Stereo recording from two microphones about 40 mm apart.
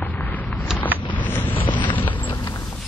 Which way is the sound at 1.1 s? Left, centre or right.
Left.